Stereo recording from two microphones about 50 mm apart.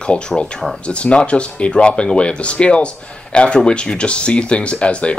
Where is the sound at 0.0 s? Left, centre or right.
Left.